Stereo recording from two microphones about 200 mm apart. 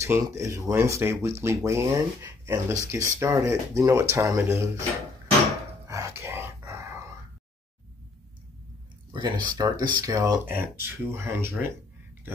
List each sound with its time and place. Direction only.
0.0 s speech: 15° right (ahead or behind)
5.9 s a sound: 15° right (ahead or behind)
9.1 s speech: 20° right (ahead or behind)